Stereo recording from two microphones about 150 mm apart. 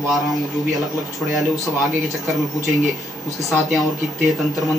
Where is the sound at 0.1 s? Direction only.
Centre (ahead or behind).